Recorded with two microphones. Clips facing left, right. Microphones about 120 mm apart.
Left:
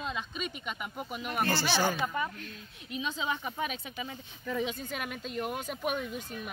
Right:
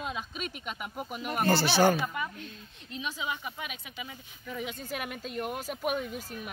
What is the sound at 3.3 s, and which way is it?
Speech, 30° left (ahead or behind).